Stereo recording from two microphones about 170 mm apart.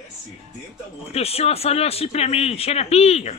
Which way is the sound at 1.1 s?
35° left (ahead or behind).